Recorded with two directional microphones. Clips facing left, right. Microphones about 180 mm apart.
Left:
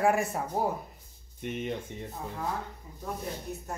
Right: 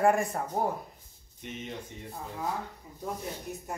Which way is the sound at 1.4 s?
55° left (ahead or behind).